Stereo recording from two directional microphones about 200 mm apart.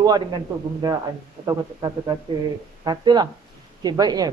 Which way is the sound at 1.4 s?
20° right (ahead or behind).